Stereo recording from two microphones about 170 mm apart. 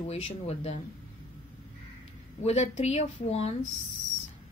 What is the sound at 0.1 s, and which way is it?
Speech, 40° left (ahead or behind).